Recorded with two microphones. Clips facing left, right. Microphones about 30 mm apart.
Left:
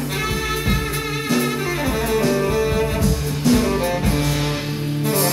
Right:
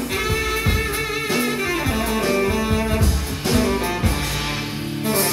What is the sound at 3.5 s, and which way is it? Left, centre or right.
Music, centre.